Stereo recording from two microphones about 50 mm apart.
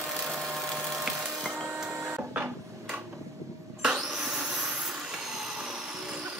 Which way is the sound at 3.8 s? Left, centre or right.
Centre.